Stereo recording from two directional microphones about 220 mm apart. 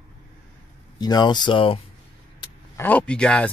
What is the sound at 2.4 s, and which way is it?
Vehicle, 10° left (ahead or behind).